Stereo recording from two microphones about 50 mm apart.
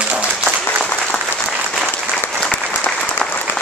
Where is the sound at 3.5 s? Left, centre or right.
Left.